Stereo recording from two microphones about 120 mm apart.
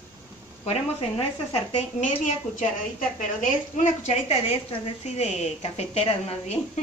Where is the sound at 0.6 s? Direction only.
55° left (ahead or behind).